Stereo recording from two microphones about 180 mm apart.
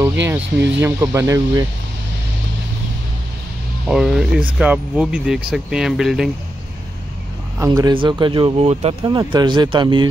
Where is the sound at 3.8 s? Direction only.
Centre (ahead or behind).